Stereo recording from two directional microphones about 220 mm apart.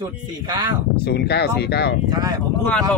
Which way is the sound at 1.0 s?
50° left (ahead or behind).